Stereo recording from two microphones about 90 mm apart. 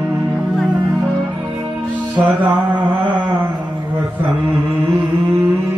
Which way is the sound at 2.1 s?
15° right (ahead or behind).